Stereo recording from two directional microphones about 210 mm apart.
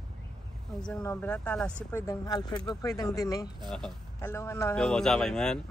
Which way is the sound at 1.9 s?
15° left (ahead or behind).